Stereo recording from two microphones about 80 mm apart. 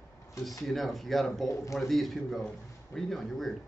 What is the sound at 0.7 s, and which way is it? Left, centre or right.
Speech, centre.